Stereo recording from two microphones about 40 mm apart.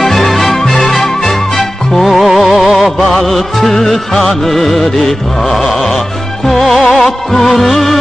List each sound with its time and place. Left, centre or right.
0.0 s music: centre